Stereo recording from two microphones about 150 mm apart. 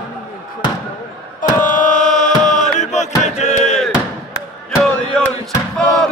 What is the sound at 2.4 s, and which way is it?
Chant, 55° left (ahead or behind).